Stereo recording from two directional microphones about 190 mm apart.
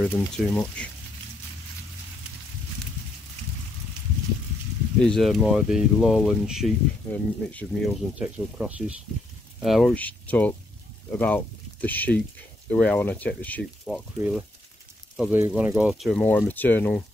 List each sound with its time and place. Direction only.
0.1 s speech: 10° left (ahead or behind)
4.9 s speech: 5° left (ahead or behind)
7.1 s speech: 10° left (ahead or behind)
8.1 s speech: 5° right (ahead or behind)
14.1 s speech: 10° right (ahead or behind)
16.2 s speech: 10° left (ahead or behind)